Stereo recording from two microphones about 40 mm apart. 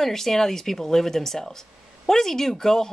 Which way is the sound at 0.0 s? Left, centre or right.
Centre.